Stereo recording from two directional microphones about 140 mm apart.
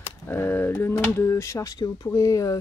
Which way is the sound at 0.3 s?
15° left (ahead or behind).